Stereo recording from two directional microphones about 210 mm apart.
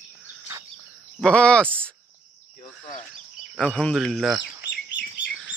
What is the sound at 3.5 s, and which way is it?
Speech, 5° left (ahead or behind).